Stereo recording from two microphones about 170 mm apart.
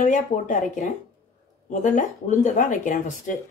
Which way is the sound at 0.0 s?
50° left (ahead or behind).